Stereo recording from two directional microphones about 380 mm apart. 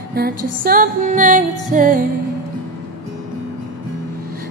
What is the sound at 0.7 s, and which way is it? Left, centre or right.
Music, right.